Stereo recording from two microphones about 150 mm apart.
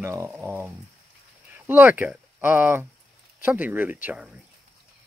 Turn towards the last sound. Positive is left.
turn(degrees=-10)  # may be behind; listen again after turning